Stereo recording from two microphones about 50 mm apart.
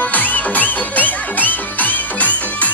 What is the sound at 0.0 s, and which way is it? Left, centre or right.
Music, left.